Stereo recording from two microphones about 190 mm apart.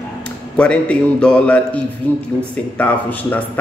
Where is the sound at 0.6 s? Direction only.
5° left (ahead or behind).